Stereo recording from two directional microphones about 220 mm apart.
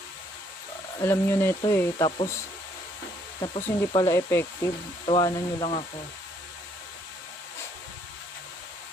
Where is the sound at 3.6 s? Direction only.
15° left (ahead or behind).